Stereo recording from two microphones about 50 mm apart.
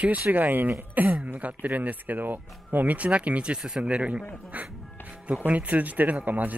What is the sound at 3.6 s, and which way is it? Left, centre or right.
Speech, centre.